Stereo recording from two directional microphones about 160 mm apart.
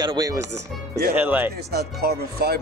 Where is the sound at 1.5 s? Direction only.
80° right.